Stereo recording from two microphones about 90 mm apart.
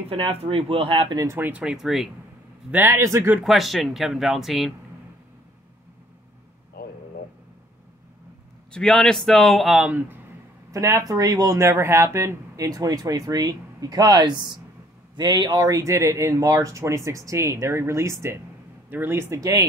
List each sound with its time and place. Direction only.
0.1 s speech: 90° right
1.1 s speech: 35° right (ahead or behind)
1.4 s speech: 10° right (ahead or behind)
2.7 s speech: 25° right (ahead or behind)
3.4 s speech: centre (ahead or behind)
8.7 s speech: 5° left (ahead or behind)
9.8 s speech: 15° right (ahead or behind)
10.7 s speech: 40° right (ahead or behind)
11.6 s speech: 30° right (ahead or behind)